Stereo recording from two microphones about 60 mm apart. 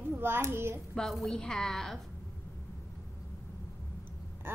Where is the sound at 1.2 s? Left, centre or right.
Centre.